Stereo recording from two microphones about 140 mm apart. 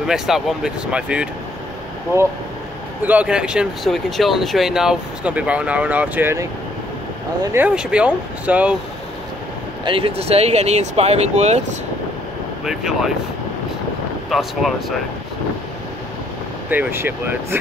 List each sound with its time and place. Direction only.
0.0 s speech: 5° right (ahead or behind)
3.0 s speech: 10° right (ahead or behind)
7.5 s speech: 10° right (ahead or behind)
9.8 s speech: 40° right (ahead or behind)
12.6 s speech: 5° right (ahead or behind)
14.3 s speech: centre (ahead or behind)
16.7 s speech: 15° right (ahead or behind)